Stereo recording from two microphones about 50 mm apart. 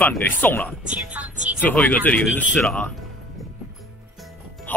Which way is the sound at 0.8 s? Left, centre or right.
Right.